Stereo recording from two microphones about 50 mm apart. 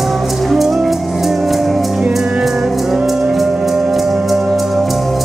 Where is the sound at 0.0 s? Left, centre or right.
Centre.